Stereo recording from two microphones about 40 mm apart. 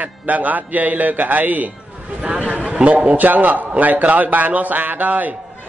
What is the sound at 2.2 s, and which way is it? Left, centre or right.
A man's voice, right.